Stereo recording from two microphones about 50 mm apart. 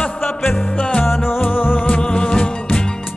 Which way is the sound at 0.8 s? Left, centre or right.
Left.